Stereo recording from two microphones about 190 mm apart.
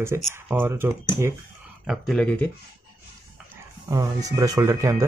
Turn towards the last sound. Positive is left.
turn(degrees=-15)  # may be behind; listen again after turning